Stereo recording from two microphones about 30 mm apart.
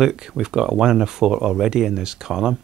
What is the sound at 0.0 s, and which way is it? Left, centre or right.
Speech, right.